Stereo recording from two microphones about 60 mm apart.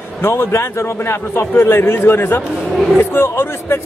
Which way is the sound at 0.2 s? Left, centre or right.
Left.